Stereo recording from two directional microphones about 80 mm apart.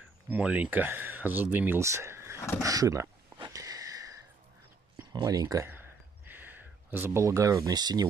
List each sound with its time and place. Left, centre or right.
0.3 s speech: centre
1.8 s a sound: right
2.6 s speech: right
3.5 s sniff: right
5.1 s speech: right
5.6 s a sound: right
7.2 s speech: right
7.7 s speech: right